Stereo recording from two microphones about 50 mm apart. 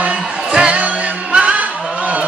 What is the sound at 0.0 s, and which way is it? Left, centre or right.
Music, right.